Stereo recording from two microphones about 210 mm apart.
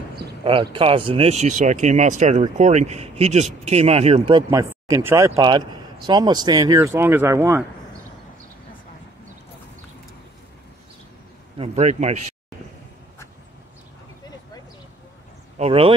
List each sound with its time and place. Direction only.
0.4 s speech: 25° right (ahead or behind)
4.4 s speech: 15° right (ahead or behind)
11.5 s speech: 30° right (ahead or behind)
15.5 s speech: 30° right (ahead or behind)